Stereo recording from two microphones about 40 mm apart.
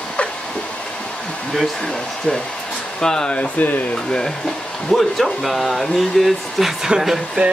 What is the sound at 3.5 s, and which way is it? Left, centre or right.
Speech, left.